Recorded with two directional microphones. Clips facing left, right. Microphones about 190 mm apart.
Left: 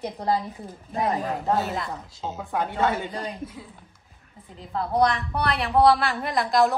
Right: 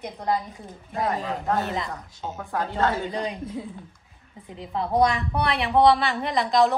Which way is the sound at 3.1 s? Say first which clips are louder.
Right 3 dB; centre (ahead or behind).